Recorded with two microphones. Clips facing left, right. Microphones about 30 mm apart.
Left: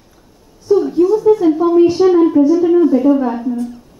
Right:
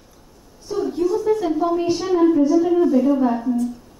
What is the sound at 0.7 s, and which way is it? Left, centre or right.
A woman's voice, centre.